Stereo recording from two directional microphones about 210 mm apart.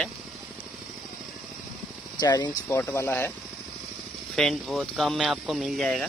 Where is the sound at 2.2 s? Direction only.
20° left (ahead or behind).